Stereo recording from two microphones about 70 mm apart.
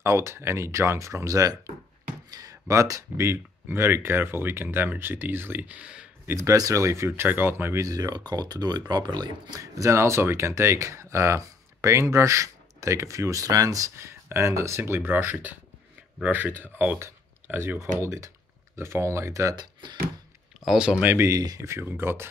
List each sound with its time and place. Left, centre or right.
0.0 s speech: right
3.6 s speech: right; by 6.0 s centre
6.2 s speech: right
6.5 s speech: right
7.8 s speech: right
9.6 s speech: right
13.9 s speech: right
17.0 s a sound: right
17.9 s speech: right
19.5 s speech: right
20.6 s speech: centre
21.0 s speech: right
21.3 s speech: right
21.8 s speech: right